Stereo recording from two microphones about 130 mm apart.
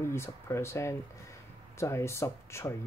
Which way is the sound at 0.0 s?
20° left (ahead or behind).